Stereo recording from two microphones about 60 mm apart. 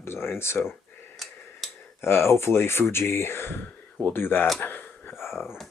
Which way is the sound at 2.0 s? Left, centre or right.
Left.